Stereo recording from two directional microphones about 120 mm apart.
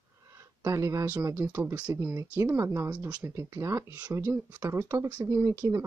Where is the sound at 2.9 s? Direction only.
10° right (ahead or behind).